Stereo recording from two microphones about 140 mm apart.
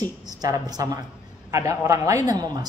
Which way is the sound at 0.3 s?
30° right (ahead or behind).